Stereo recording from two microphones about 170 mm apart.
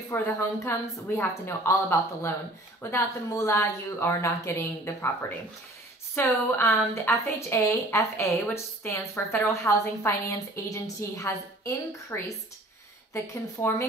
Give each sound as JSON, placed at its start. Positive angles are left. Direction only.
{"t": 0.1, "sound": "a woman's voice", "side_deg": 10}
{"t": 6.1, "sound": "a woman's voice", "side_deg": 15}